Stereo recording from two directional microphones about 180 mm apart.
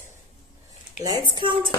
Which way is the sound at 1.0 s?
25° right (ahead or behind).